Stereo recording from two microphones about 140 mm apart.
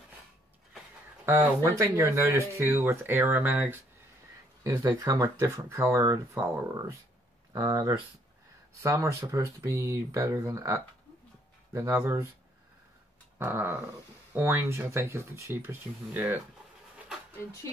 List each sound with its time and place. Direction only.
1.2 s speech: 20° right (ahead or behind)
4.8 s speech: 25° right (ahead or behind)
13.4 s speech: 15° right (ahead or behind)